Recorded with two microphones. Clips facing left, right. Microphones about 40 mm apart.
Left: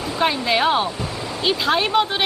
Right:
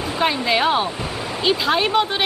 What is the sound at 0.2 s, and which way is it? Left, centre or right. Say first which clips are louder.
A woman's voice: even; centre.